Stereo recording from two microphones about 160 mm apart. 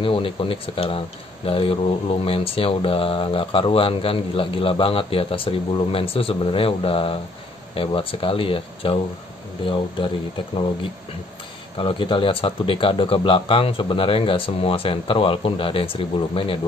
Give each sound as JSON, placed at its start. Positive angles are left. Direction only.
{"t": 0.0, "sound": "speech", "side_deg": 35}
{"t": 11.8, "sound": "speech", "side_deg": 35}